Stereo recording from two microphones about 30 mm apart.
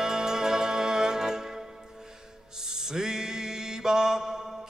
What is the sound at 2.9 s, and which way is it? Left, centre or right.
Mantra, right.